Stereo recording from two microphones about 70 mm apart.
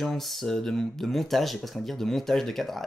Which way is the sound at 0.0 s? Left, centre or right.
Centre.